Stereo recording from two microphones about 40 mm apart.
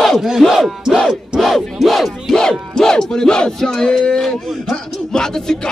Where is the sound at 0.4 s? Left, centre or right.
Centre.